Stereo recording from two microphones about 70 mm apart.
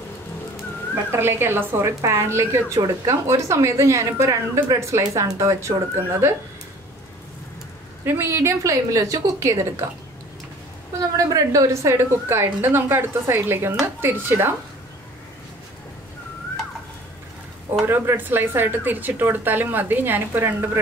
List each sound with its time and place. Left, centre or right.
1.1 s a woman's voice: right
8.0 s a woman's voice: right
11.0 s a woman's voice: right
17.8 s speech: right